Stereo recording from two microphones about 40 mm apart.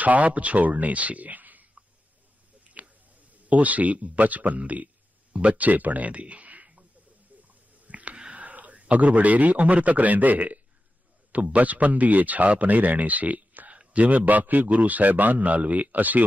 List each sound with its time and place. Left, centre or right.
0.0 s speech: right
7.8 s a sound: right
8.3 s a man's voice: right